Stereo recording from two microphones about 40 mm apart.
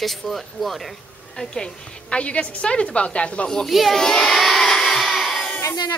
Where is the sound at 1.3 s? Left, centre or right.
Left.